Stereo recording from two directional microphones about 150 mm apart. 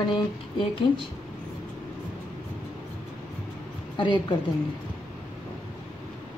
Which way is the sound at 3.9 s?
30° left (ahead or behind).